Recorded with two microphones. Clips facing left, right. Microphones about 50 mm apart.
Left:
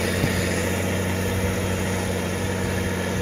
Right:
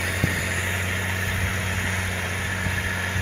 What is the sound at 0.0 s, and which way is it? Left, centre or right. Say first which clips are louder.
Vehicle: left 2 dB; right.